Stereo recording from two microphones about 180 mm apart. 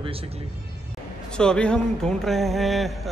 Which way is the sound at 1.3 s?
5° left (ahead or behind).